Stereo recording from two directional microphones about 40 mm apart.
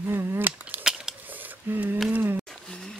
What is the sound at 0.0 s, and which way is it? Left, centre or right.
Cap gun, right.